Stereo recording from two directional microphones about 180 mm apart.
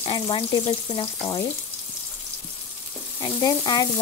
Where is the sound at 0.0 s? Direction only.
30° left (ahead or behind).